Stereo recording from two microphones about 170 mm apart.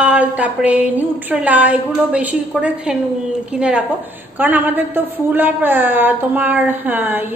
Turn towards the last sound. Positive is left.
turn(degrees=-10)  # may be behind; listen again after turning